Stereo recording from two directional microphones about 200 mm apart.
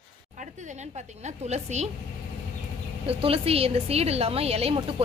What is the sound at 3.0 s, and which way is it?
A woman's voice, 30° right (ahead or behind).